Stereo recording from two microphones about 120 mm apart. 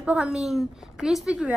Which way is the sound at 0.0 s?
10° right (ahead or behind).